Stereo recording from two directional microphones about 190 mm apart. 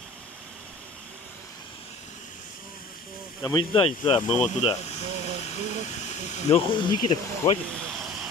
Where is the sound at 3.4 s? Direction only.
25° left (ahead or behind).